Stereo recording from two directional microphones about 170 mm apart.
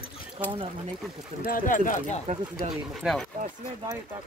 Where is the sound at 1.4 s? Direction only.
55° left (ahead or behind).